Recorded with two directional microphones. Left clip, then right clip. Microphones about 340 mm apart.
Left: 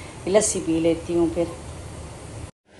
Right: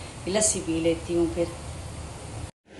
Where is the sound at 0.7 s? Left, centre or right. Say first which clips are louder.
Left 5 dB; centre.